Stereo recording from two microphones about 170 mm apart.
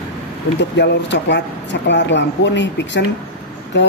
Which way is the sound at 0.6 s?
90° left.